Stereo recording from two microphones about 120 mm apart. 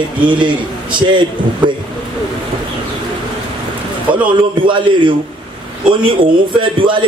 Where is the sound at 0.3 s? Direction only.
40° right (ahead or behind).